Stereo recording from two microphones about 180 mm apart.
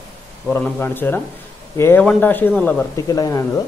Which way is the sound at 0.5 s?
10° left (ahead or behind).